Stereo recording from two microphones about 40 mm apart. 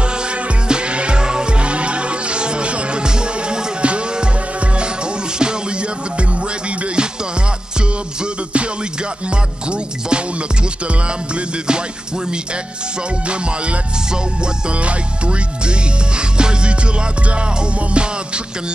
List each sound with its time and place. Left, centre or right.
0.0 s music: right
13.3 s music: right